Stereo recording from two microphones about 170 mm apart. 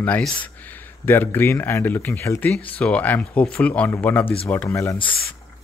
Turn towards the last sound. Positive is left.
turn(degrees=15)  # may be behind; listen again after turning